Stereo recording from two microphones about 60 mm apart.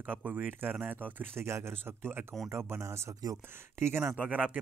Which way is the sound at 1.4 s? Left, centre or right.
Right.